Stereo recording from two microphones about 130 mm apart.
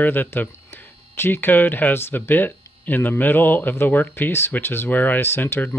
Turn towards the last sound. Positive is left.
turn(degrees=15)  # may be behind; listen again after turning